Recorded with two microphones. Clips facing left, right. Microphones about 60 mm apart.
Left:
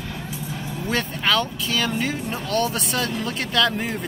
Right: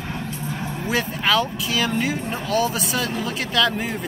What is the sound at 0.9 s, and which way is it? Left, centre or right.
Speech, centre.